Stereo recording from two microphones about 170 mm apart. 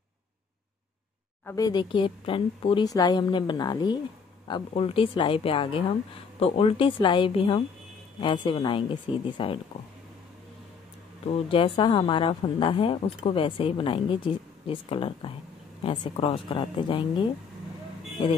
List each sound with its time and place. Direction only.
1.4 s speech: 20° left (ahead or behind)
11.2 s speech: 30° left (ahead or behind)